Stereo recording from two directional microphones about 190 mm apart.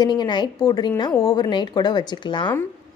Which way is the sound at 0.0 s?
25° left (ahead or behind).